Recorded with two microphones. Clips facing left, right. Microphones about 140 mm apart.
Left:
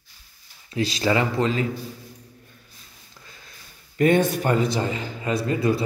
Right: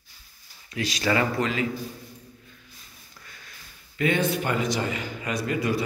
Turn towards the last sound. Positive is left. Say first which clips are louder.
# left 4 dB
turn(degrees=30)  # may be behind; listen again after turning